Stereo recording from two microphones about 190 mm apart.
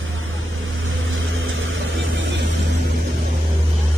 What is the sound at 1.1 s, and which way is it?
Vehicle, 90° right.